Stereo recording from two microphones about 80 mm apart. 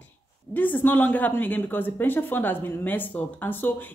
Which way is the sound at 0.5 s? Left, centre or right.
Left.